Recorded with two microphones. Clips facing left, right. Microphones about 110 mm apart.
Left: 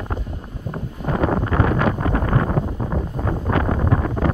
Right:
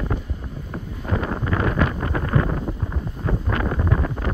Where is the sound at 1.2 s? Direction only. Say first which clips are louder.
Left 5 dB; 55° left (ahead or behind).